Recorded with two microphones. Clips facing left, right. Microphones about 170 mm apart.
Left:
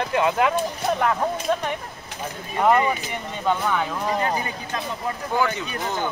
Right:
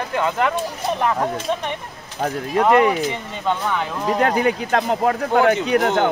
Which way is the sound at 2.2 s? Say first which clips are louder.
Right 3 dB; 80° right.